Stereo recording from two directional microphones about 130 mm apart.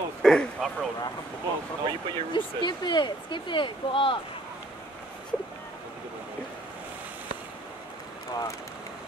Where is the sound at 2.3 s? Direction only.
35° left (ahead or behind).